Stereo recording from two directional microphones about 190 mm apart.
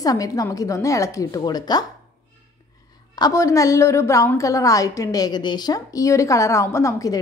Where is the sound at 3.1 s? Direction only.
20° left (ahead or behind).